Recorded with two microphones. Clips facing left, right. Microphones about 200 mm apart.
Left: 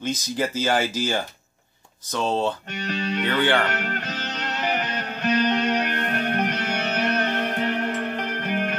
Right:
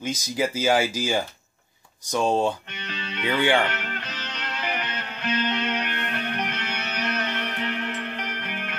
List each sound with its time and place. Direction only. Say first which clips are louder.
0.0 s speech: even; 10° right (ahead or behind)
2.7 s speech: left 9 dB; 45° left (ahead or behind)
3.3 s speech: right 1 dB; 15° right (ahead or behind)
3.6 s music: left 3 dB; 45° left (ahead or behind)